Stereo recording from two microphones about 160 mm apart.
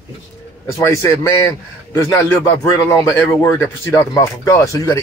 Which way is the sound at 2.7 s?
20° left (ahead or behind).